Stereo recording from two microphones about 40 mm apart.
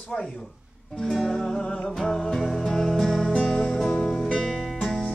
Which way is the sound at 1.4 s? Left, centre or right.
Left.